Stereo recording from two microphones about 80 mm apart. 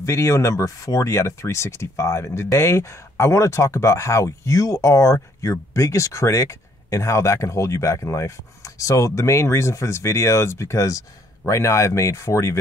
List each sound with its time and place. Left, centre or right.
0.0 s speech: left